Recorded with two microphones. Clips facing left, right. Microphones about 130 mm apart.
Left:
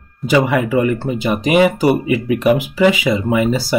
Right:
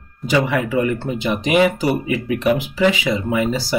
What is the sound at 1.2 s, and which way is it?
Speech, 45° left (ahead or behind).